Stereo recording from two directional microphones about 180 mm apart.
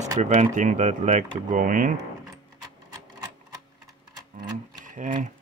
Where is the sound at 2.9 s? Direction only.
20° right (ahead or behind).